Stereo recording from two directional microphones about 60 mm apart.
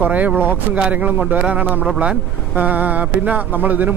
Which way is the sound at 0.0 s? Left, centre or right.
Right.